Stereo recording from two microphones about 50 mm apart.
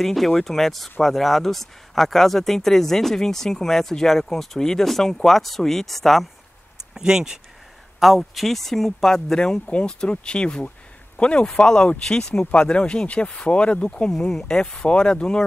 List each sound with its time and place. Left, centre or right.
0.0 s speech: centre
6.9 s speech: centre
8.0 s speech: centre